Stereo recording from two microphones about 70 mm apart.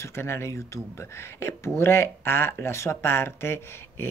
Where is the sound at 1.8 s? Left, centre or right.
Left.